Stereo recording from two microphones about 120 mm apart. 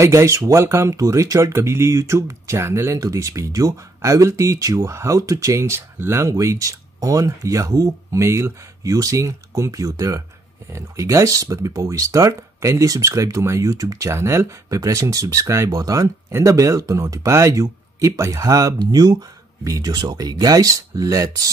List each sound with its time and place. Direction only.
0.0 s speech: 25° right (ahead or behind)